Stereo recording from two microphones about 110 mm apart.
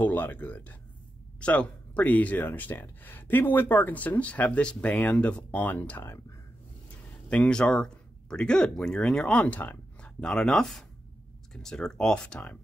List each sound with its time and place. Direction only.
0.0 s speech: 15° left (ahead or behind)
7.2 s speech: 10° left (ahead or behind)